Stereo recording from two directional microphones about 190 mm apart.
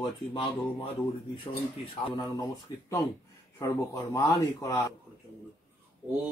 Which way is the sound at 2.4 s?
15° left (ahead or behind).